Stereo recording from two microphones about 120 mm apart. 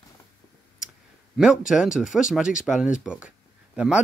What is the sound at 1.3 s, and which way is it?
Speech, 5° right (ahead or behind).